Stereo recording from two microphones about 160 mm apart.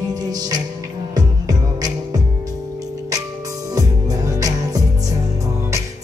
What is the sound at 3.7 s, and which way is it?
Music, 25° right (ahead or behind).